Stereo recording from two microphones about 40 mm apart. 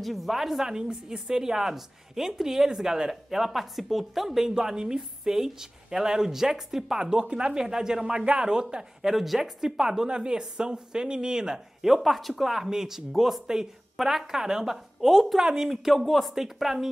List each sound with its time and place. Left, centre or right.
0.0 s speech: centre
4.6 s speech: centre
9.0 s speech: centre
15.0 s speech: centre